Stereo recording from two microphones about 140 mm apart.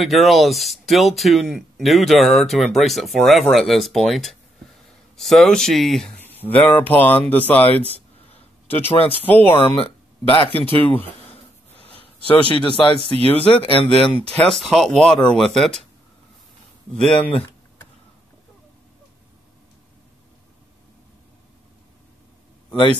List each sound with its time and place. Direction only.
0.0 s speech: centre (ahead or behind)
8.8 s speech: 45° left (ahead or behind)
9.1 s speech: 15° left (ahead or behind)
9.8 s speech: 40° left (ahead or behind)
10.8 s speech: 15° left (ahead or behind)
12.0 s a sound: 40° left (ahead or behind)
12.8 s speech: 35° left (ahead or behind)
13.9 s speech: 5° left (ahead or behind)
16.9 s speech: 5° left (ahead or behind)